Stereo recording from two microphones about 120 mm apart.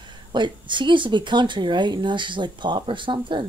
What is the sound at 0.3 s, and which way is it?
Speech, 40° right (ahead or behind).